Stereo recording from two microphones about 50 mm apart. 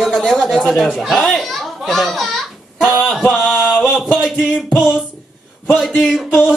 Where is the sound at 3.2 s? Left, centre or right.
Centre.